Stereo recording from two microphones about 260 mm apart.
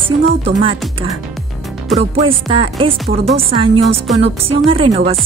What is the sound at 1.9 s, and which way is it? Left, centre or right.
Speech, centre.